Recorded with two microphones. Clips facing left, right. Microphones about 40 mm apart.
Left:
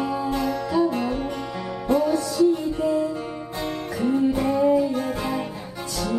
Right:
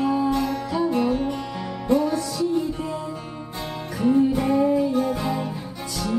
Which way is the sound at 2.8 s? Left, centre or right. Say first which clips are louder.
Left 7 dB; centre.